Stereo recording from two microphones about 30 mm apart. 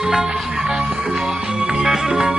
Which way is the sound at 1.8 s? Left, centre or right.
Centre.